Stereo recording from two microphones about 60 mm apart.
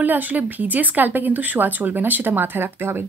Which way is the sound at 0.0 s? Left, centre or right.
Right.